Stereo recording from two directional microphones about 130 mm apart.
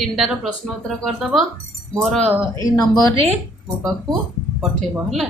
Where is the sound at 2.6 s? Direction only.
30° left (ahead or behind).